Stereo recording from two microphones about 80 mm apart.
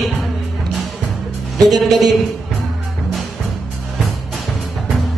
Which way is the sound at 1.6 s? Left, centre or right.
Centre.